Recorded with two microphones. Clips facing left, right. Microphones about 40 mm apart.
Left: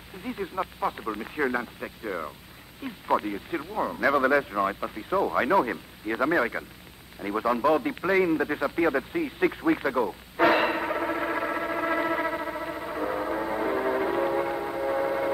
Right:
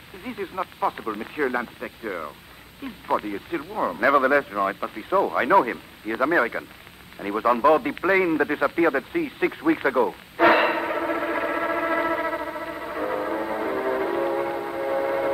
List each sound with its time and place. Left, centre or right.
0.2 s speech: centre
9.8 s speech: centre
10.4 s a sound: centre